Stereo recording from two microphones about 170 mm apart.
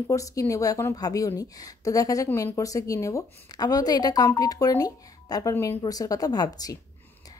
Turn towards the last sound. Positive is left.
turn(degrees=20)  # may be behind; listen again after turning